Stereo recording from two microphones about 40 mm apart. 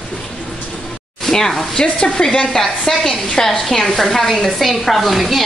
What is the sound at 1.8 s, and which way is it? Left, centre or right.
A woman's voice, left.